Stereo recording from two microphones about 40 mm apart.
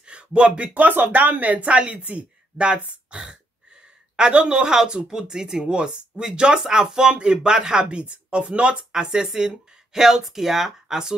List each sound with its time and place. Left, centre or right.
0.0 s a sound: right
0.7 s speech: right
2.0 s speech: right
2.5 s speech: right
3.1 s a sound: centre
4.8 s speech: right